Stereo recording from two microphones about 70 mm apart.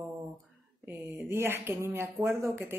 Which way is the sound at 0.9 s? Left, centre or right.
Right.